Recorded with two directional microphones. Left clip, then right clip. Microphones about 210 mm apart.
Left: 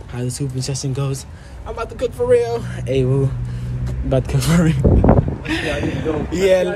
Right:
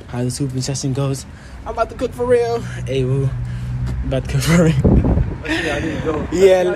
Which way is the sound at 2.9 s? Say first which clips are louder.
Left 2 dB; 45° left (ahead or behind).